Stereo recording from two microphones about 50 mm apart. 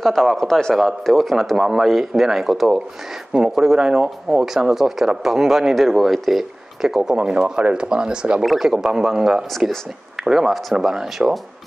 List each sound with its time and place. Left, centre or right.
0.0 s speech: centre
1.6 s speech: centre
3.3 s speech: centre
8.4 s speech: centre